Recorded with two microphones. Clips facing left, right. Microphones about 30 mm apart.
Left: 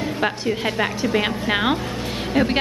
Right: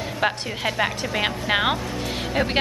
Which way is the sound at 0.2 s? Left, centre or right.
Centre.